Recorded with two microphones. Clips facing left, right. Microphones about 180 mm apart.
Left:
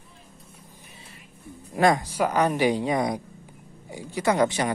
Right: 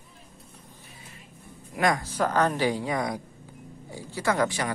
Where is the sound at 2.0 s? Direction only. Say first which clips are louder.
Left 1 dB; 10° left (ahead or behind).